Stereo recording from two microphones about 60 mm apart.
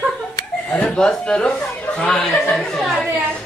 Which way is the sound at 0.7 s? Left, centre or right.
Centre.